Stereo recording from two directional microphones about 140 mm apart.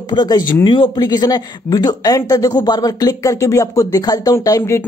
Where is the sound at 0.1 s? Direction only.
35° left (ahead or behind).